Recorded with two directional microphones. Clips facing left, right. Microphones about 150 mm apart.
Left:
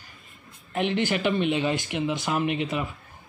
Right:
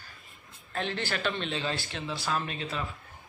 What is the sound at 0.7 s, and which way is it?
Speech, 15° left (ahead or behind).